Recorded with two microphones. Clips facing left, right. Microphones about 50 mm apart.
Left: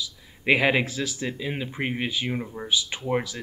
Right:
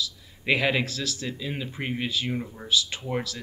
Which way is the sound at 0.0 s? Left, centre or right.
Centre.